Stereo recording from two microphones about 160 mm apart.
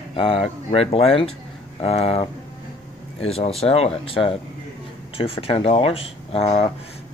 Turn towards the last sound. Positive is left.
turn(degrees=40)  # may be behind; listen again after turning